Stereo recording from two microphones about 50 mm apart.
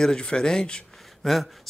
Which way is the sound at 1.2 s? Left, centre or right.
Centre.